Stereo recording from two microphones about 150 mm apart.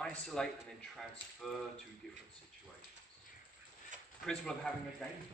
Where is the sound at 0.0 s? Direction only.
5° left (ahead or behind).